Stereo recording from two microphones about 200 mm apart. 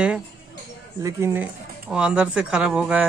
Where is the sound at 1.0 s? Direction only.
10° right (ahead or behind).